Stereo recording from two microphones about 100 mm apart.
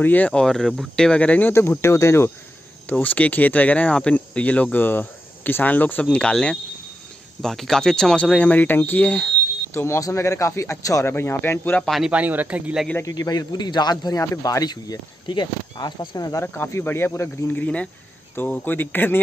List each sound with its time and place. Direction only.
0.0 s speech: 15° left (ahead or behind)
1.5 s a man's voice: 25° left (ahead or behind)
2.9 s speech: 15° left (ahead or behind)
9.8 s a man's voice: 30° left (ahead or behind)
11.8 s speech: centre (ahead or behind)
12.1 s speech: 15° right (ahead or behind)
13.0 s speech: 40° left (ahead or behind)
14.2 s speech: 30° left (ahead or behind)
16.4 s a man's voice: 25° left (ahead or behind)
17.6 s a man's voice: 15° left (ahead or behind)